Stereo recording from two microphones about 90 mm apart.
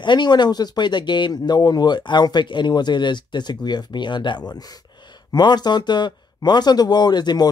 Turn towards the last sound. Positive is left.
turn(degrees=50)  # may be behind; listen again after turning